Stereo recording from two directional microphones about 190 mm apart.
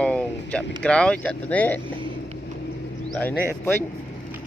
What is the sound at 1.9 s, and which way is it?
Vehicle, 90° left.